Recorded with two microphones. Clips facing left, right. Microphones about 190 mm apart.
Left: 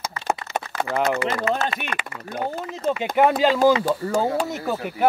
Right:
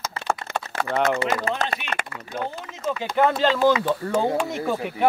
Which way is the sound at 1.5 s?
35° right (ahead or behind).